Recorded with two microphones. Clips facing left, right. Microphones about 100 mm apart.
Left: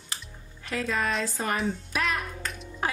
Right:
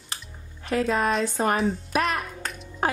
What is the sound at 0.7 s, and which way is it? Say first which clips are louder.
A child's voice: right 5 dB; 45° right (ahead or behind).